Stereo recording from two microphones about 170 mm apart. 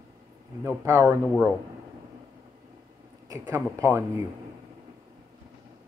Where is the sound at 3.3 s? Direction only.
20° right (ahead or behind).